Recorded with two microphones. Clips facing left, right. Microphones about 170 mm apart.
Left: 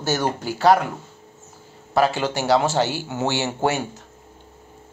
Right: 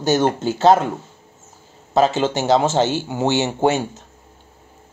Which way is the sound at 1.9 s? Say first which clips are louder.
Right 3 dB; 20° right (ahead or behind).